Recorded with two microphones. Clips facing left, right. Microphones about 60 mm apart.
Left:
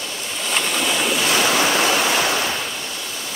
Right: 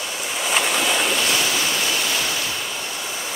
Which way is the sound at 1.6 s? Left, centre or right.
Left.